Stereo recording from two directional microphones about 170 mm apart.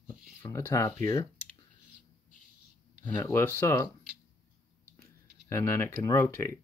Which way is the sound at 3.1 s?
15° left (ahead or behind).